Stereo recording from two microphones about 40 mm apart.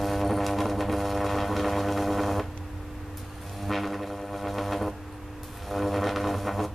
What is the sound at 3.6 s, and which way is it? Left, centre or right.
Music, centre.